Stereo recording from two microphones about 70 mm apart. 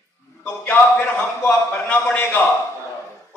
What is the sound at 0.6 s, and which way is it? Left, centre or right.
A man's voice, left.